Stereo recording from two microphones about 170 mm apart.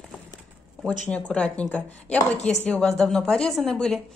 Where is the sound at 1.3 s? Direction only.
5° left (ahead or behind).